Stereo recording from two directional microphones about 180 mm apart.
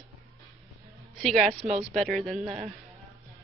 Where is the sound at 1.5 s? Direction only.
35° right (ahead or behind).